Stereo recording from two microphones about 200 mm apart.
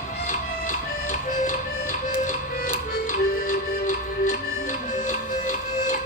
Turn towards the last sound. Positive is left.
turn(degrees=40)  # may be behind; listen again after turning